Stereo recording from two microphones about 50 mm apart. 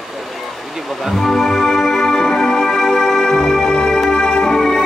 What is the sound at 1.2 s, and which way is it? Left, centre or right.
Music, centre.